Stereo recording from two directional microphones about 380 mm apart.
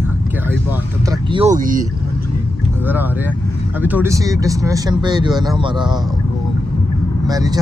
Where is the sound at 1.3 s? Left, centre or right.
Centre.